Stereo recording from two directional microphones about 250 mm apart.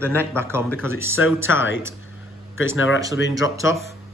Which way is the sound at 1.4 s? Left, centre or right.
Left.